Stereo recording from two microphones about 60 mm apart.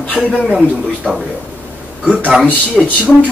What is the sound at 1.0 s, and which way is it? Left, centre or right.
Speech, centre.